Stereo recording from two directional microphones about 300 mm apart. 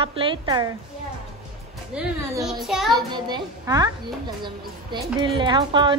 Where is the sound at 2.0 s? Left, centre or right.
Centre.